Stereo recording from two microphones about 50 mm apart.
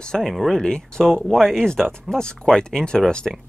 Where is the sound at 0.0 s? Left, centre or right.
Centre.